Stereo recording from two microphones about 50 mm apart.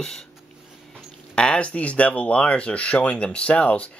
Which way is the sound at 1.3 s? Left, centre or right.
Left.